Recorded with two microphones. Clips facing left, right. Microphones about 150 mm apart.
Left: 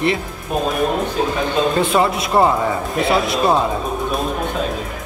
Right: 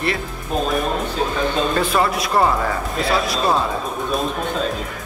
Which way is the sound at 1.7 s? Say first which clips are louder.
Left 2 dB; 20° left (ahead or behind).